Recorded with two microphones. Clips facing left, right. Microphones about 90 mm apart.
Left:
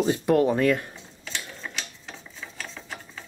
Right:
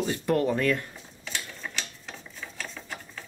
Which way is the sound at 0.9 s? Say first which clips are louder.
Even; 5° right (ahead or behind).